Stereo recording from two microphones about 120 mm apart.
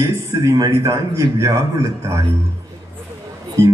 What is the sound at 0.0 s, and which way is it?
A man's voice, 25° right (ahead or behind).